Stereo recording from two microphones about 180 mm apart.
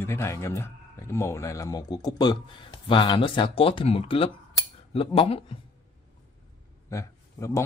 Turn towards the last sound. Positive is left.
turn(degrees=15)  # may be behind; listen again after turning